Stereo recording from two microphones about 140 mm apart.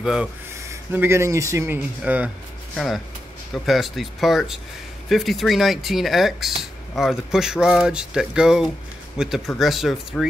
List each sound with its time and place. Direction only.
0.0 s speech: 5° right (ahead or behind)
0.7 s speech: 20° right (ahead or behind)
2.7 s speech: 5° left (ahead or behind)